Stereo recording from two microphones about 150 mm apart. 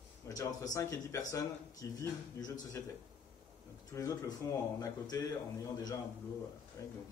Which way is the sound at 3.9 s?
25° left (ahead or behind).